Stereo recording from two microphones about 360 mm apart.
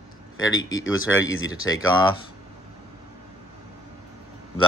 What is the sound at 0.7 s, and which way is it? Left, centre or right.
Speech, left.